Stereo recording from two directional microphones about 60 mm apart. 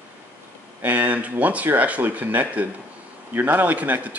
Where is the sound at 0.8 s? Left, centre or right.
Right.